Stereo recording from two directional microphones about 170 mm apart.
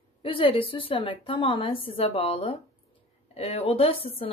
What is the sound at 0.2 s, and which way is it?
A woman's voice, 30° left (ahead or behind).